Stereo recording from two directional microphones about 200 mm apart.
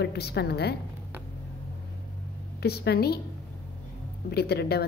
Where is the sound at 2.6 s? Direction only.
55° left (ahead or behind).